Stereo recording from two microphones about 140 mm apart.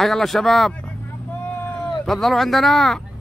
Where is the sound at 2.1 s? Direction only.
Centre (ahead or behind).